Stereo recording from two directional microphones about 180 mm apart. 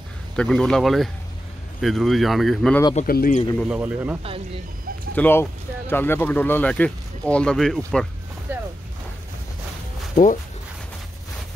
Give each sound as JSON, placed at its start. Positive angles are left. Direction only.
{"t": 0.4, "sound": "speech", "side_deg": 5}
{"t": 3.0, "sound": "speech", "side_deg": 50}
{"t": 3.6, "sound": "speech", "side_deg": -5}
{"t": 5.1, "sound": "speech", "side_deg": 10}
{"t": 8.5, "sound": "boat", "side_deg": -10}
{"t": 10.2, "sound": "speech", "side_deg": 45}